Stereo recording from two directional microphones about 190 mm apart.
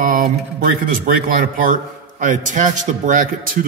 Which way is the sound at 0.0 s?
45° right (ahead or behind).